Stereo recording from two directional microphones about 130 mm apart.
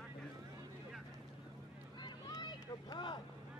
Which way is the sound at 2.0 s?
30° left (ahead or behind).